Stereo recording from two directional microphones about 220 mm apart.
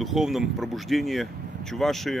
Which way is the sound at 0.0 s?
Centre (ahead or behind).